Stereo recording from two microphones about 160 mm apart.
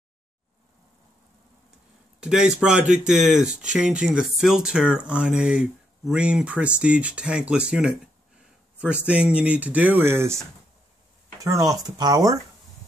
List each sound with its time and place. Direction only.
2.1 s speech: 5° right (ahead or behind); by 12.4 s 20° right (ahead or behind)